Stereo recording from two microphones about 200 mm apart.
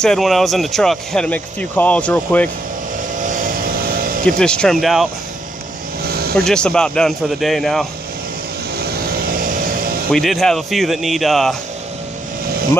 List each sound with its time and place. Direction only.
0.0 s speech: centre (ahead or behind)
3.2 s vehicle: 40° right (ahead or behind)
4.3 s speech: 5° left (ahead or behind)
6.0 s vehicle: 50° right (ahead or behind)
6.3 s speech: 5° left (ahead or behind)
8.7 s vehicle: 45° right (ahead or behind)
10.1 s speech: centre (ahead or behind)